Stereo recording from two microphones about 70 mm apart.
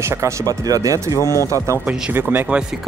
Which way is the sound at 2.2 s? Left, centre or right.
Right.